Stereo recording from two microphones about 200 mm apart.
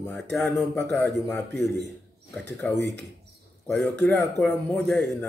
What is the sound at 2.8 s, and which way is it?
Speech, 60° right (ahead or behind).